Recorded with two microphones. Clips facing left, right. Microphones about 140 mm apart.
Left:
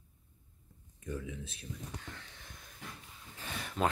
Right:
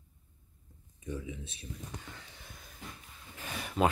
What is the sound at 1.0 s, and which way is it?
Speech, 5° right (ahead or behind).